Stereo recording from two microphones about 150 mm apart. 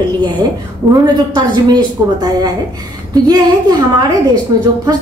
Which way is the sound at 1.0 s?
25° right (ahead or behind).